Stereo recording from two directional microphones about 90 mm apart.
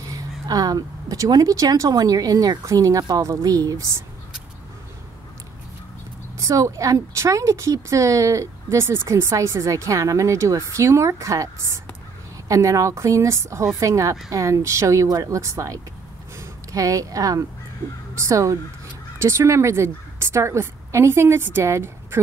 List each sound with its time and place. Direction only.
0.1 s speech: 45° right (ahead or behind)
6.3 s a woman's voice: 40° right (ahead or behind)